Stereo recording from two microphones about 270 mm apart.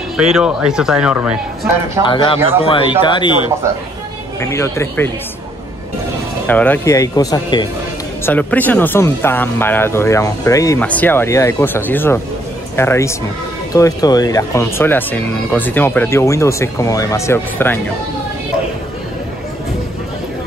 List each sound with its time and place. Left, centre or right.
0.2 s speech: centre
2.0 s speech: centre
6.4 s speech: centre